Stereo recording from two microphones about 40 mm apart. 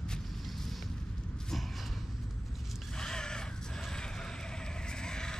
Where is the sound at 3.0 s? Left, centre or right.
Centre.